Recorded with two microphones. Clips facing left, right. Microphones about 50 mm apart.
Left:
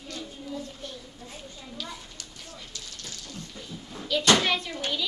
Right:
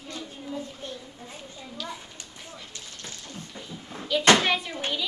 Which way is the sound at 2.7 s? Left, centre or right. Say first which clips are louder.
Even; right.